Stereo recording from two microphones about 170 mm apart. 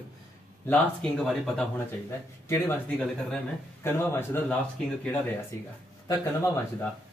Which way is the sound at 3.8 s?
15° left (ahead or behind).